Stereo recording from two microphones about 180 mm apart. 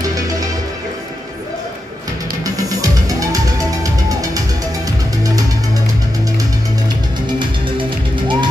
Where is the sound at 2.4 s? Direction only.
20° right (ahead or behind).